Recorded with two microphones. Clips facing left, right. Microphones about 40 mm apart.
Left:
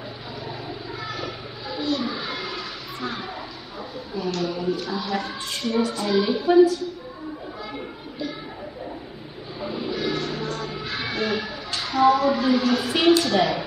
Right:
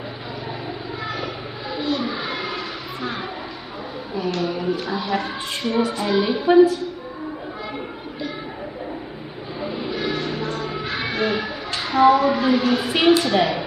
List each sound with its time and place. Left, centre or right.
1.0 s a sound: centre
4.1 s speech: centre
9.6 s music: centre